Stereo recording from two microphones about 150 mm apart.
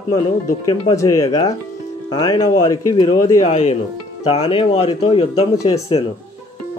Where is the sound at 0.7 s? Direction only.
25° left (ahead or behind).